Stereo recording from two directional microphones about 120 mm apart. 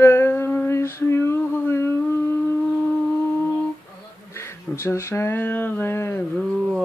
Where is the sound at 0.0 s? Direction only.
20° left (ahead or behind).